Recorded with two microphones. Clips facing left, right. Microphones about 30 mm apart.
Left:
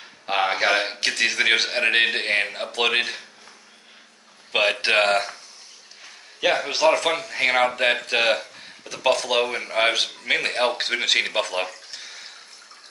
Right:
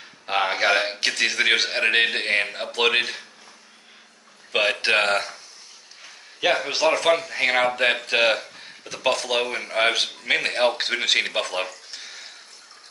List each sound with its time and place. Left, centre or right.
0.0 s speech: centre
4.5 s speech: centre
11.9 s a sound: centre